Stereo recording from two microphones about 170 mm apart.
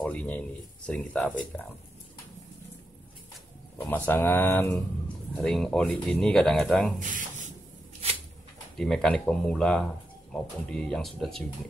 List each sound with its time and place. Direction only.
0.0 s speech: 10° left (ahead or behind)
3.7 s speech: 10° left (ahead or behind)
7.0 s a sound: 50° right (ahead or behind)
8.7 s speech: 5° left (ahead or behind)